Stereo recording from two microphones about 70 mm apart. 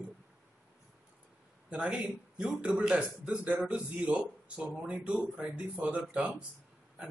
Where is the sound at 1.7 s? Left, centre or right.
Centre.